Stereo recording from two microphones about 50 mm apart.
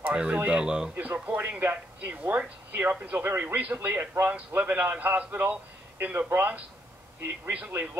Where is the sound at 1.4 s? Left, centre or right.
Right.